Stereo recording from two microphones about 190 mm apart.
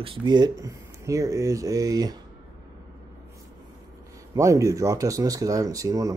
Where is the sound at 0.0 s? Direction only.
25° right (ahead or behind).